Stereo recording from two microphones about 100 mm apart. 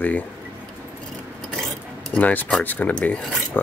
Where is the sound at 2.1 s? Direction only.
15° left (ahead or behind).